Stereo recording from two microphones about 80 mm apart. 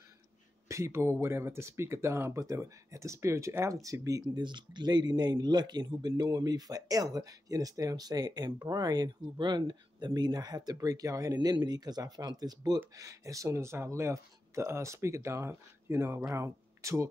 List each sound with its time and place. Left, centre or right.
0.7 s speech: right
4.4 s speech: right
11.3 s speech: right
16.3 s speech: right